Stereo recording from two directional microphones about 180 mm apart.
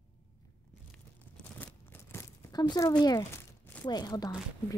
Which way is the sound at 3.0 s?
20° left (ahead or behind).